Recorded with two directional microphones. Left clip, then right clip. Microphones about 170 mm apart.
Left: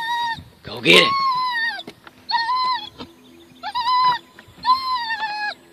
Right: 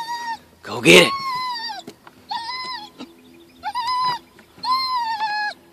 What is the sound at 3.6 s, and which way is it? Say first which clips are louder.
Owl: left 4 dB; 5° left (ahead or behind).